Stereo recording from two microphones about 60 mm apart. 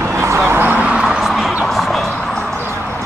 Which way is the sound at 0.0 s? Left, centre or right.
Right.